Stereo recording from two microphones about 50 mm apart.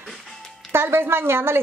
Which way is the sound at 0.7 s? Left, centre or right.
Right.